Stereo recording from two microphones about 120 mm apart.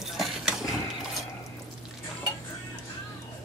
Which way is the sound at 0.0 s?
5° right (ahead or behind).